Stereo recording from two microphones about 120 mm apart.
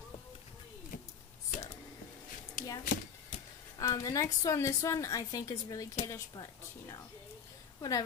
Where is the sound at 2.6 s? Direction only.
90° left.